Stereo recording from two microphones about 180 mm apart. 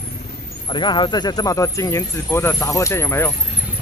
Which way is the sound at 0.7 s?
25° left (ahead or behind).